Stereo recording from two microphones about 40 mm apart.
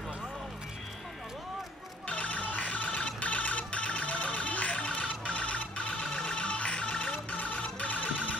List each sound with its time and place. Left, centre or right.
2.0 s music: left